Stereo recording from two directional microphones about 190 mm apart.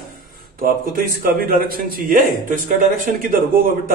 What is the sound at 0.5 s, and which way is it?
A man's voice, 50° right (ahead or behind).